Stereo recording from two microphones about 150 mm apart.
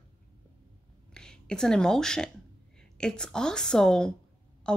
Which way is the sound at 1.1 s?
5° left (ahead or behind).